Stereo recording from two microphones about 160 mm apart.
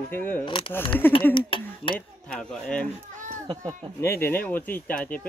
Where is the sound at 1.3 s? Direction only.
35° left (ahead or behind).